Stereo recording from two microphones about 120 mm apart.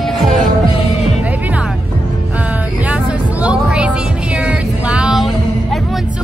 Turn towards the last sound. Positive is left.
turn(degrees=-10)  # may be behind; listen again after turning